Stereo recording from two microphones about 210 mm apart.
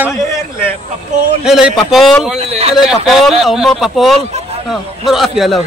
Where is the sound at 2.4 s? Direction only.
30° right (ahead or behind).